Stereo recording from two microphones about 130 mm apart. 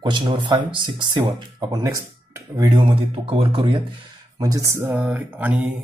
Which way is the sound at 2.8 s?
45° right (ahead or behind).